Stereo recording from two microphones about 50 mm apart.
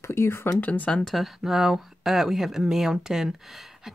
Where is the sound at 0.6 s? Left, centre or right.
Left.